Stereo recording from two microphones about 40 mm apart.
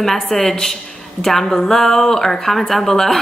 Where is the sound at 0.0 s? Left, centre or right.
Centre.